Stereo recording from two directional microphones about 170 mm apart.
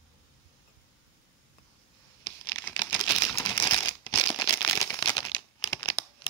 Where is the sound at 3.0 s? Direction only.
20° left (ahead or behind).